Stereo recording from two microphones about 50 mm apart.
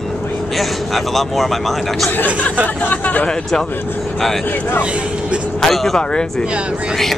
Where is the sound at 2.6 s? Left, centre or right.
Left.